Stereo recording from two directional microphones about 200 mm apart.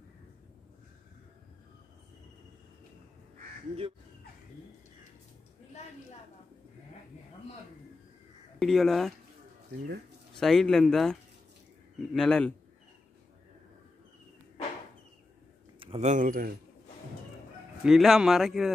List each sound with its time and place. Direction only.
8.5 s speech: centre (ahead or behind)
10.3 s speech: centre (ahead or behind)
15.8 s speech: 30° right (ahead or behind)
17.8 s speech: centre (ahead or behind)